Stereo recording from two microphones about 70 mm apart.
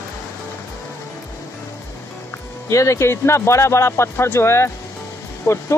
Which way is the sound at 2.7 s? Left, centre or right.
Left.